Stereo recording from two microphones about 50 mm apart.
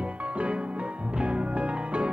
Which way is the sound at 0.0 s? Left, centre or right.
Right.